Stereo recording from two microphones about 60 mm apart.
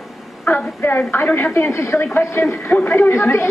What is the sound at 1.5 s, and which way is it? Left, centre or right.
A man's voice, left.